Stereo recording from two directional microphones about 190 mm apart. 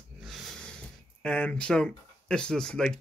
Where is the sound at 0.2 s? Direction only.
Centre (ahead or behind).